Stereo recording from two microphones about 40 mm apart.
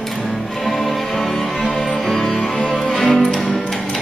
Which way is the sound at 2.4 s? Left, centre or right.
Centre.